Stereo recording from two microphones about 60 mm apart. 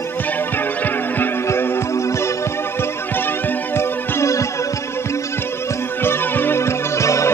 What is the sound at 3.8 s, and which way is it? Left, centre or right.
Music, left.